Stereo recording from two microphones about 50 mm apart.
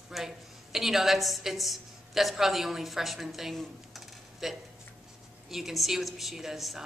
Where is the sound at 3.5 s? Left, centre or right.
Centre.